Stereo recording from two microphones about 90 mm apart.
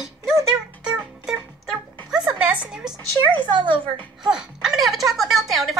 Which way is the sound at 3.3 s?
55° right (ahead or behind).